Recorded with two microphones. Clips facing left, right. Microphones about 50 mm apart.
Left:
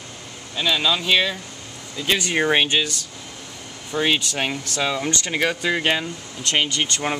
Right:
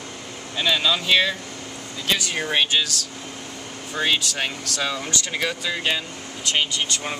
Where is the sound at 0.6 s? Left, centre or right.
Centre.